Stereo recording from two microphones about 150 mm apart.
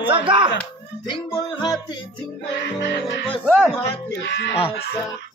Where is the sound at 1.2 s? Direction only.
35° left (ahead or behind).